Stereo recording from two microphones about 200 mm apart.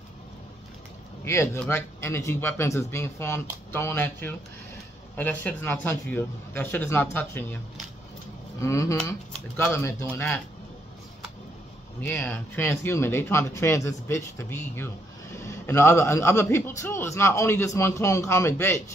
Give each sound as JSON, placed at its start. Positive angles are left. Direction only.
{"t": 1.2, "sound": "a man's voice", "side_deg": 15}
{"t": 12.0, "sound": "a man's voice", "side_deg": 10}